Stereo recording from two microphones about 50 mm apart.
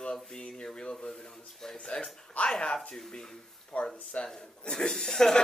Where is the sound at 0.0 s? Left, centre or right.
Centre.